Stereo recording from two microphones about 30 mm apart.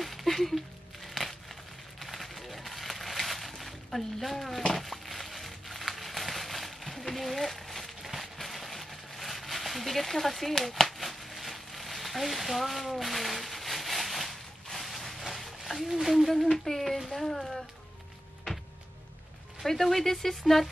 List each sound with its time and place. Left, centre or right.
0.0 s a sound: centre
1.0 s crumpling: centre
2.0 s a sound: centre
15.6 s speech: centre
16.3 s speech: centre
19.6 s speech: centre